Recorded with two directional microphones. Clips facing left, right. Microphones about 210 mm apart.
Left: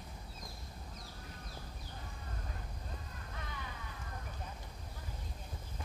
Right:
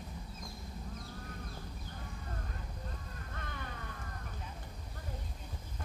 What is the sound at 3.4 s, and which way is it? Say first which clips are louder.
Crow: right 2 dB; 55° right (ahead or behind).